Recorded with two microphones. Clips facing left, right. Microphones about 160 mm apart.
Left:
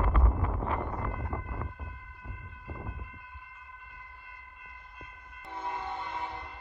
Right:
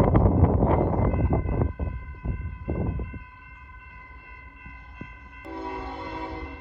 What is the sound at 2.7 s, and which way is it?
Vehicle, 45° right (ahead or behind).